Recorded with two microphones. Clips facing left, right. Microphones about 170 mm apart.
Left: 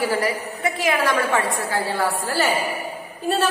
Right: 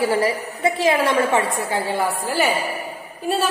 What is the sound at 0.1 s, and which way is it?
A woman's voice, 25° right (ahead or behind).